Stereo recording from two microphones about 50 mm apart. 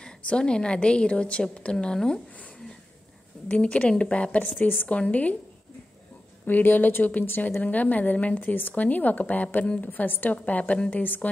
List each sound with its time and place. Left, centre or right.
0.0 s a woman's voice: centre
3.4 s a woman's voice: left
6.4 s a woman's voice: left